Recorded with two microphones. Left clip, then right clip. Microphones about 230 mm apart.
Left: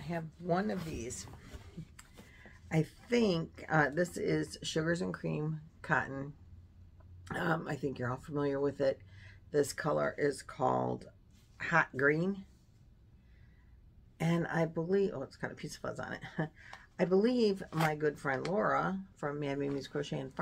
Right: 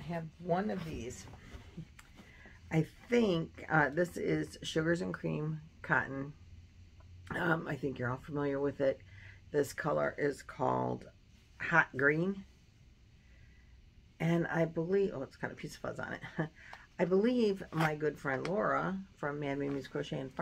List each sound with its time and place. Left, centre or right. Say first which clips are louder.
0.0 s speech: left 1 dB; centre
2.7 s speech: right 1 dB; centre
7.2 s speech: right 1 dB; centre
14.1 s speech: right 1 dB; centre